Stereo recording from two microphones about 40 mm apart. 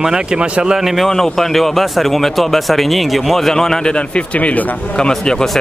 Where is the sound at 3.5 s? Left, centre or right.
Centre.